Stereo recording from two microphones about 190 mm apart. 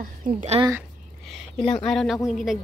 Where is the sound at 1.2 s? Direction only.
Centre (ahead or behind).